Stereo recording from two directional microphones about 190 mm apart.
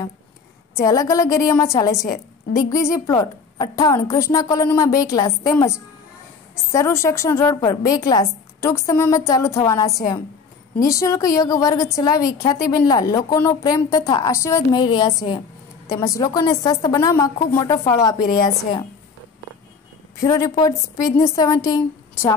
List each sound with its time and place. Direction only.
0.7 s a woman's voice: 15° left (ahead or behind)
6.7 s a woman's voice: 15° left (ahead or behind)
20.2 s a woman's voice: 20° left (ahead or behind)